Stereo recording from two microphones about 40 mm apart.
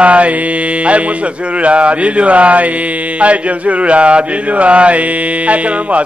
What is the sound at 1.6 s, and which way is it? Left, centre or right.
Mantra, right.